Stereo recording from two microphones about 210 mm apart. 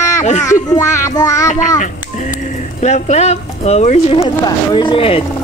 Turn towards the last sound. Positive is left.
turn(degrees=25)  # may be behind; listen again after turning